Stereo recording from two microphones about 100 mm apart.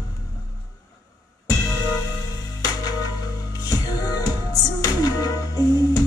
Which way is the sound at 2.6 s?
40° left (ahead or behind).